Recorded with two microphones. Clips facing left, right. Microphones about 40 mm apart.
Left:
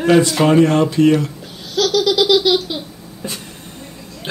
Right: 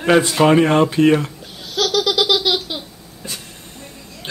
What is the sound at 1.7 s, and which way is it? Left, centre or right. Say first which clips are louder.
Laughter: left 2 dB; centre.